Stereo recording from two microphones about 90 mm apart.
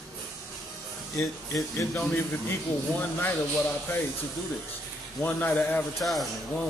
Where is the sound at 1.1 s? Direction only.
35° left (ahead or behind).